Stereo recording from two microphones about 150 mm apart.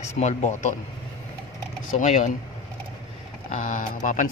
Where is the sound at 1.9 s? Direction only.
55° left (ahead or behind).